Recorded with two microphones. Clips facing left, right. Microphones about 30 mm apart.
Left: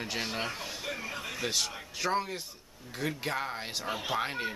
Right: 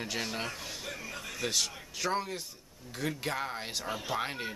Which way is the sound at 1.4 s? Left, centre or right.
Centre.